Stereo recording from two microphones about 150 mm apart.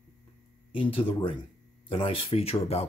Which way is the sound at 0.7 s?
35° left (ahead or behind).